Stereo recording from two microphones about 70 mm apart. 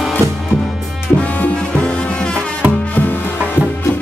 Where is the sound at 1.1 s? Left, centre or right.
Left.